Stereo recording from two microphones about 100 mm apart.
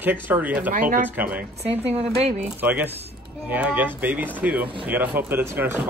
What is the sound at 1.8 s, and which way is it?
Speech, 85° right.